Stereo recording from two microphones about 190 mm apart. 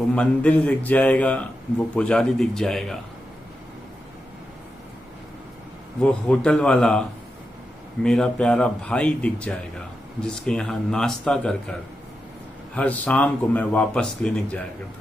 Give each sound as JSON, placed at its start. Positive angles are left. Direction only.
{"t": 0.1, "sound": "speech", "side_deg": 5}
{"t": 6.0, "sound": "speech", "side_deg": 5}
{"t": 12.7, "sound": "speech", "side_deg": 5}